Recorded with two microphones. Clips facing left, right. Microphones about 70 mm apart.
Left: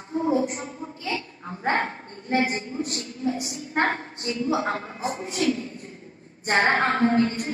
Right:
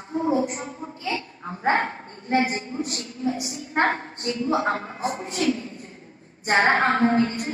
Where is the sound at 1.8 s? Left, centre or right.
Right.